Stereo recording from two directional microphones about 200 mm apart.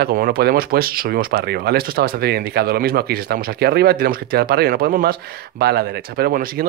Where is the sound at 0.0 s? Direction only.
50° right (ahead or behind).